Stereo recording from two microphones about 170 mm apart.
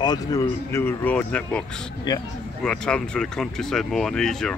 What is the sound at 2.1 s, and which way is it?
Speech, 25° left (ahead or behind).